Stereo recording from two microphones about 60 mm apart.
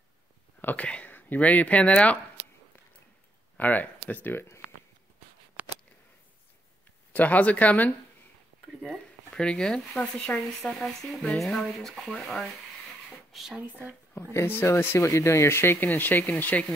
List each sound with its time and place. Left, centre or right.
0.6 s whispering: left
0.8 s speech: centre
3.5 s speech: left
5.6 s a sound: right
7.1 s speech: left
8.8 s speech: centre
14.3 s speech: left
15.0 s speech: left
15.8 s speech: left